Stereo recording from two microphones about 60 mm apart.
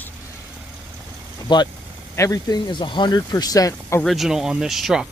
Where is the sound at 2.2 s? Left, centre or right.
Left.